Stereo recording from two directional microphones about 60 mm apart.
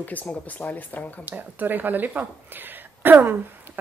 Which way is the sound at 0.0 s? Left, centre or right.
Left.